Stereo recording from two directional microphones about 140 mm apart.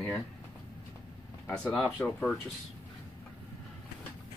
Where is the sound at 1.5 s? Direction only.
5° left (ahead or behind).